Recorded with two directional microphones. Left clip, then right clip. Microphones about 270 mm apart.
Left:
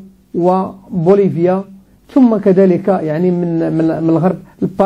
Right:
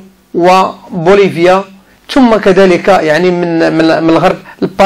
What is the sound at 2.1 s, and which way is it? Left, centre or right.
Speech, right.